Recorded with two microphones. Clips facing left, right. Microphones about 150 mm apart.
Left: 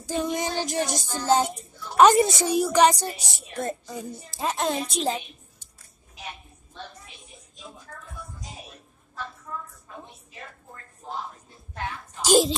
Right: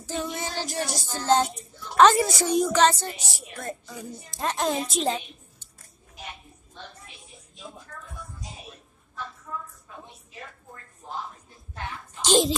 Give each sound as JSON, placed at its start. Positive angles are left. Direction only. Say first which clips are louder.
{"t": 0.0, "sound": "child singing", "louder": "left 4 dB", "side_deg": 15}
{"t": 2.1, "sound": "a woman's voice", "louder": "left 4 dB", "side_deg": 20}
{"t": 2.4, "sound": "child singing", "louder": "right 1 dB", "side_deg": 10}
{"t": 3.2, "sound": "a woman's voice", "louder": "left 6 dB", "side_deg": 20}
{"t": 4.3, "sound": "a woman's voice", "louder": "even", "side_deg": 0}
{"t": 12.2, "sound": "a sound", "louder": "left 2 dB", "side_deg": 10}